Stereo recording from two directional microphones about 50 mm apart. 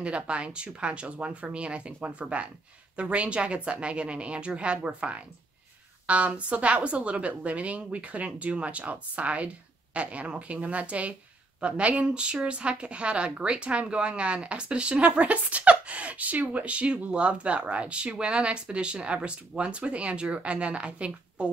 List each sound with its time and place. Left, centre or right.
0.0 s a woman's voice: right